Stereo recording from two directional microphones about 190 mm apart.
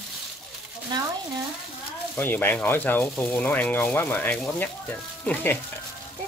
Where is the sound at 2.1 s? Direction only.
10° left (ahead or behind).